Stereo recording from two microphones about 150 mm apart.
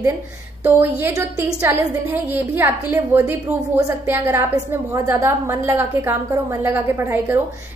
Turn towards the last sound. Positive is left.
turn(degrees=-15)  # may be behind; listen again after turning